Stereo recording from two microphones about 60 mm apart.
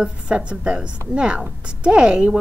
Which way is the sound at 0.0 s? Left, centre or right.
Centre.